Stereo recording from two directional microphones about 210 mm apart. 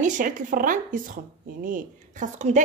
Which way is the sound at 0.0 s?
35° right (ahead or behind).